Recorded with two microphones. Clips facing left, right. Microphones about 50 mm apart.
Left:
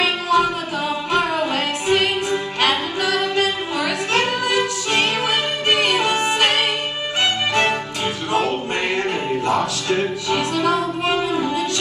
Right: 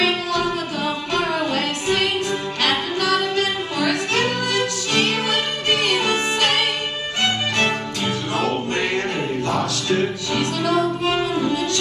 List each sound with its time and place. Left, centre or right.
0.0 s music: left
8.3 s music: left